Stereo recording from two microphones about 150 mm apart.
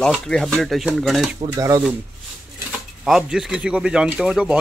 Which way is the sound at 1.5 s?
25° right (ahead or behind).